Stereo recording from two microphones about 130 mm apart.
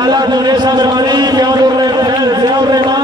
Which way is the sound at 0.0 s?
30° right (ahead or behind).